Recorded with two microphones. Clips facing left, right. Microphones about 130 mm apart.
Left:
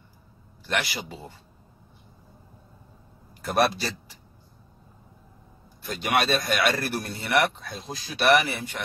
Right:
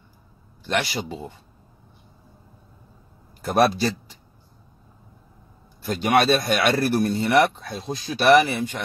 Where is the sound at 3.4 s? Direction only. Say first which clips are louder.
Right 4 dB; 25° right (ahead or behind).